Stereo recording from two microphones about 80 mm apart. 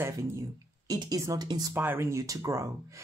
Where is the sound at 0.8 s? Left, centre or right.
Right.